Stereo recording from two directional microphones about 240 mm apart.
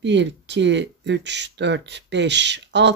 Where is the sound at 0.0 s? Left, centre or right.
Right.